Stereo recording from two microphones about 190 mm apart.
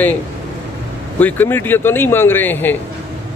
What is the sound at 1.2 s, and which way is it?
A man's voice, 10° left (ahead or behind).